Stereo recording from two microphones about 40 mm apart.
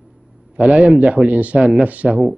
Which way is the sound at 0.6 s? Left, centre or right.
Right.